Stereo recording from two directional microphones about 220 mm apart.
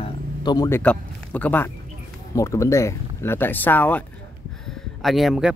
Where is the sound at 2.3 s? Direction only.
15° left (ahead or behind).